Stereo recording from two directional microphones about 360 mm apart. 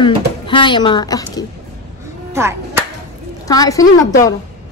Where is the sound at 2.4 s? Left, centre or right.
Centre.